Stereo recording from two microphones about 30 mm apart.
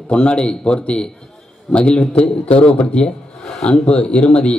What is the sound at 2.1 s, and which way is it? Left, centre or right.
A man's voice, left.